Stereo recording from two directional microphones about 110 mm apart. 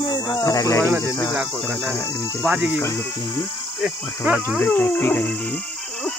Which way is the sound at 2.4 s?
5° right (ahead or behind).